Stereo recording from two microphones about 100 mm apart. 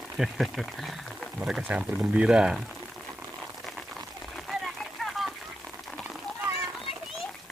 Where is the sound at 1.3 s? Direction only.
10° right (ahead or behind).